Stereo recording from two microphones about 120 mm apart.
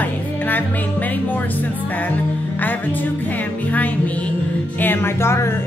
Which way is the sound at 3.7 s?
10° left (ahead or behind).